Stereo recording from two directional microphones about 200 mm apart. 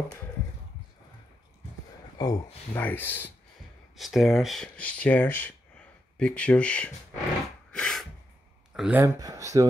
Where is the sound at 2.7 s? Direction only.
10° left (ahead or behind).